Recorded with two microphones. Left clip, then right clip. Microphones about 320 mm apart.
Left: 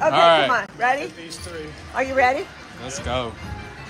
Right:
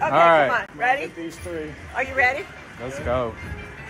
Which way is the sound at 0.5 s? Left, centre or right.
Left.